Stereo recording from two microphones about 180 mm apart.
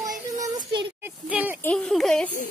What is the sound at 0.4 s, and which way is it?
Child singing, 20° right (ahead or behind).